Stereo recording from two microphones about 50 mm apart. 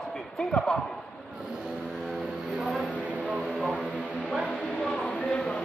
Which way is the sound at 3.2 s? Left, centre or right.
Right.